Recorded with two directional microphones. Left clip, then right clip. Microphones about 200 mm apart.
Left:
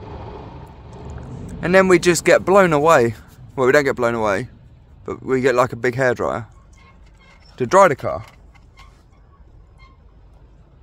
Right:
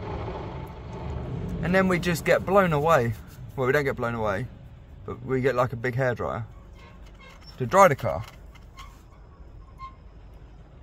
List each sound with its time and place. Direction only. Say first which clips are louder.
1.6 s speech: left 10 dB; 55° left (ahead or behind)
7.5 s speech: left 5 dB; 55° left (ahead or behind)